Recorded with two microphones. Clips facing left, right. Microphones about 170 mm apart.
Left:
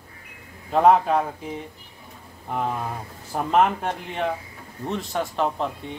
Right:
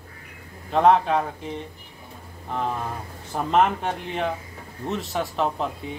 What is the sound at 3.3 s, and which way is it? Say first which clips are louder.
Speech: left 1 dB; 5° left (ahead or behind).